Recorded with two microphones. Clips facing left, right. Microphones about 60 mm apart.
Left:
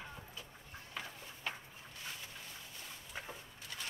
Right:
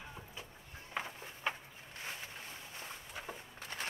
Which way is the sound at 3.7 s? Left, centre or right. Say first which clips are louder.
Right 4 dB; right.